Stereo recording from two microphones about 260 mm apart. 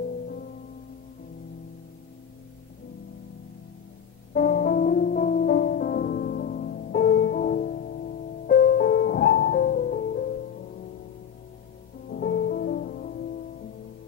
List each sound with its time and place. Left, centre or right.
4.3 s music: left
12.1 s music: left